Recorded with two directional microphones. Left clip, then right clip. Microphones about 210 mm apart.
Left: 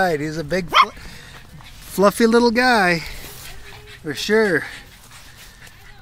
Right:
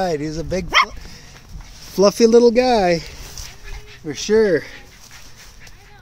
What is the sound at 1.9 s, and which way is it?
Speech, centre (ahead or behind).